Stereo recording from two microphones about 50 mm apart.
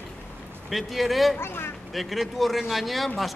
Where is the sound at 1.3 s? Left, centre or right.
Left.